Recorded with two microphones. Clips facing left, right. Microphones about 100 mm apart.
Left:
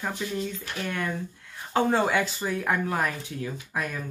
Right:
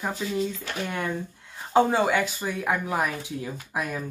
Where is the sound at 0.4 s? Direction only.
20° right (ahead or behind).